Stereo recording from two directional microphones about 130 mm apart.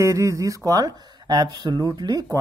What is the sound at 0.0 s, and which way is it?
Speech, 25° right (ahead or behind).